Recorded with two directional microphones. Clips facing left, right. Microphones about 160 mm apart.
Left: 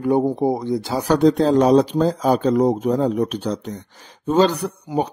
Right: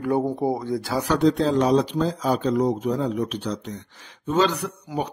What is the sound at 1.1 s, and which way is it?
Speech, 45° left (ahead or behind).